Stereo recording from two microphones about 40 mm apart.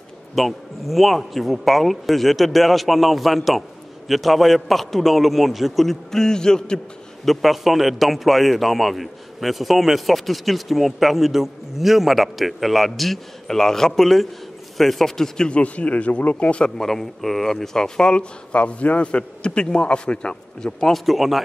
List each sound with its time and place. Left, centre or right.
0.3 s a man's voice: centre
6.1 s a man's voice: centre
7.2 s a man's voice: centre
15.4 s speech: left
16.7 s speech: centre
20.9 s a man's voice: centre